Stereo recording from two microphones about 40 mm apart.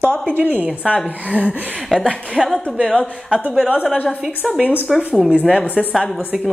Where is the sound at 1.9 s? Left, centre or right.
Centre.